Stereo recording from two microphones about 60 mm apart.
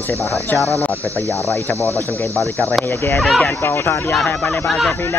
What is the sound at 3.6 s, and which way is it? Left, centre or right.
Speech, left.